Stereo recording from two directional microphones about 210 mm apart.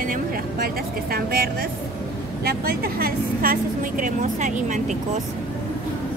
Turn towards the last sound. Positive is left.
turn(degrees=-35)  # may be behind; listen again after turning